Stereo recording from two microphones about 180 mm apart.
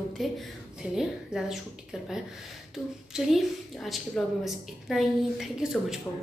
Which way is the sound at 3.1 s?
Centre (ahead or behind).